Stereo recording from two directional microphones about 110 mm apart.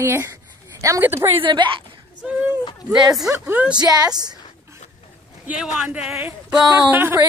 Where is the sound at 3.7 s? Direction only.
40° right (ahead or behind).